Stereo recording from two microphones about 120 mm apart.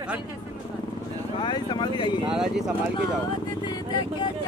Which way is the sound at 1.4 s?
40° left (ahead or behind).